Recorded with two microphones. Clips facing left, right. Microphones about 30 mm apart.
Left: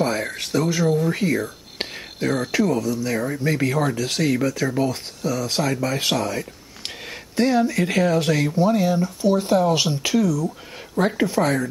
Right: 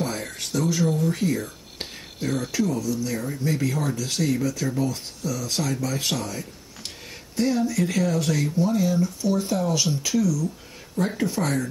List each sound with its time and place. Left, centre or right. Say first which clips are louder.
0.0 s a sound: left 6 dB; left
0.4 s speech: even; left
1.8 s speech: left 6 dB; left
11.3 s speech: left 5 dB; left